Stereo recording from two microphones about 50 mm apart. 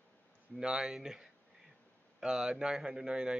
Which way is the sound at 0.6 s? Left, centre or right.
Centre.